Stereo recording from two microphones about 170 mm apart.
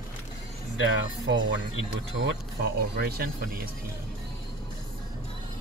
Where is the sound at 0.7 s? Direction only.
90° right.